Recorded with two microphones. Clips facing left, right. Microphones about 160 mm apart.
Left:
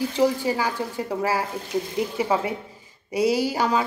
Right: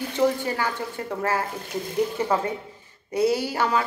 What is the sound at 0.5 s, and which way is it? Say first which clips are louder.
Speech: left 3 dB; 10° left (ahead or behind).